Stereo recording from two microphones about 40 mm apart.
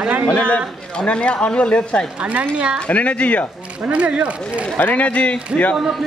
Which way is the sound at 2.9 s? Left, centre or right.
Left.